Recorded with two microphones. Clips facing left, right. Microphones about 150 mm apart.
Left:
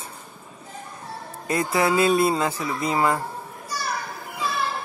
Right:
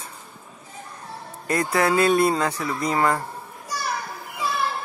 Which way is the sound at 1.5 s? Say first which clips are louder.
Even; 25° left (ahead or behind).